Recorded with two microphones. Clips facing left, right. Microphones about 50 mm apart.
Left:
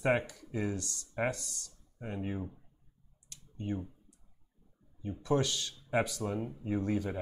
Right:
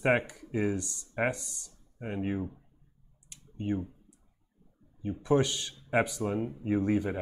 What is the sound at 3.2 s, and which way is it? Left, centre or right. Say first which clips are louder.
Clicking: right 5 dB; right.